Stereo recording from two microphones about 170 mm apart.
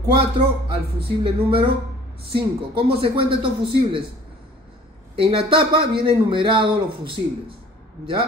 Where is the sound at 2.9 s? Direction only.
30° right (ahead or behind).